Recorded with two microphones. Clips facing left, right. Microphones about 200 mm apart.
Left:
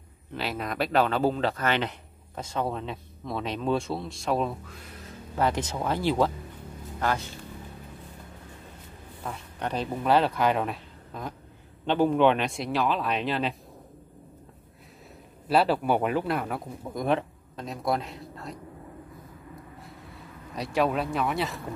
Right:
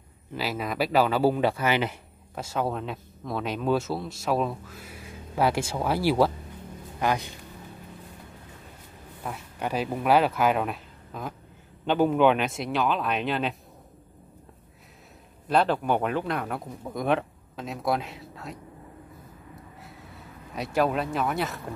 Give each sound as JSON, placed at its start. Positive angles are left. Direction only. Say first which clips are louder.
{"t": 0.3, "sound": "speech", "louder": "right 2 dB", "side_deg": -5}
{"t": 9.2, "sound": "speech", "louder": "right 1 dB", "side_deg": -5}
{"t": 15.4, "sound": "speech", "louder": "even", "side_deg": 5}
{"t": 20.5, "sound": "speech", "louder": "right 1 dB", "side_deg": 0}